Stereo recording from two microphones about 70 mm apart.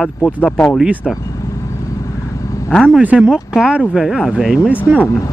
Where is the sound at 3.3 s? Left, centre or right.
Centre.